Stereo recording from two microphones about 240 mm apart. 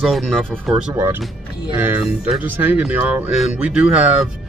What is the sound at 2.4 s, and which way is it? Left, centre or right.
Speech, centre.